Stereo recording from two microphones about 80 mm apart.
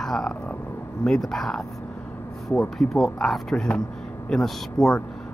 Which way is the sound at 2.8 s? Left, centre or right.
Centre.